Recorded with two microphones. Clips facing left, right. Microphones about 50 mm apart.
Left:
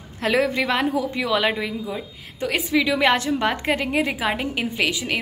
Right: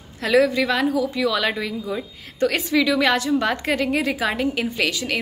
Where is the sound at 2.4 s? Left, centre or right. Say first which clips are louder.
Right 2 dB; centre.